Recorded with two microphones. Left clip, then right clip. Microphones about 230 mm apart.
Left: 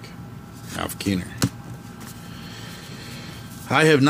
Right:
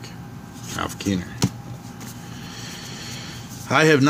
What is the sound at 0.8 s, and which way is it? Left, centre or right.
Speech, centre.